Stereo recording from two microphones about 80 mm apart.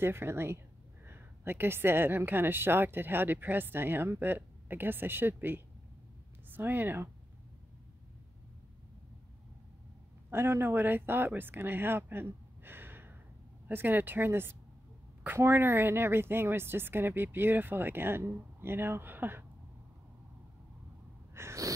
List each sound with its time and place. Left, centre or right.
0.0 s a woman's voice: right
10.3 s speech: right
21.4 s snort: right